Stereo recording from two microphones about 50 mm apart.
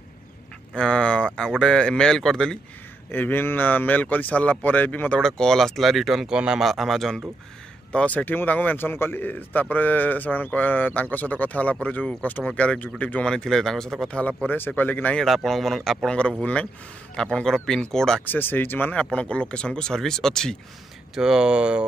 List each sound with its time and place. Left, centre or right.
0.7 s speech: centre
3.1 s a man's voice: left
5.2 s speech: centre
6.3 s speech: right
6.6 s speech: centre
7.9 s a man's voice: left
8.7 s a man's voice: left
13.2 s speech: centre
14.8 s a man's voice: left
15.2 s speech: centre
16.1 s speech: centre
18.2 s a man's voice: left
19.1 s speech: left
21.1 s speech: centre